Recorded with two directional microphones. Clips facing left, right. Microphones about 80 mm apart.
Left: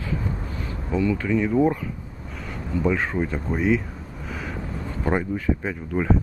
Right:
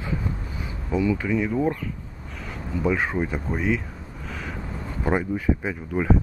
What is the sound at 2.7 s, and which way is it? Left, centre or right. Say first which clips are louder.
Speech: left 1 dB; centre.